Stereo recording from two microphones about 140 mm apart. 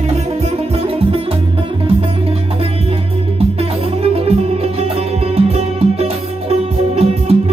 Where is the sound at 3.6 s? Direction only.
45° right (ahead or behind).